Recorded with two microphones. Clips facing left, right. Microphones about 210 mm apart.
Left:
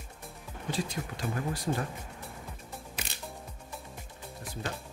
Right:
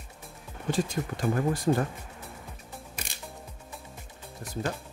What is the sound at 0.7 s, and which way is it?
Speech, 50° right (ahead or behind).